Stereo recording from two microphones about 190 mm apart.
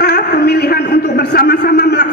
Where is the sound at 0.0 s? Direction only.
55° left (ahead or behind).